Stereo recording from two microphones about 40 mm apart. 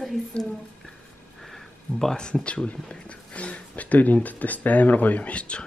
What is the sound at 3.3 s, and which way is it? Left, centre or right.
Speech, left.